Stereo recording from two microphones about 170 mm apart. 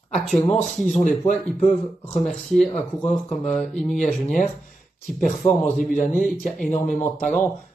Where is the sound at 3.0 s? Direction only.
45° left (ahead or behind).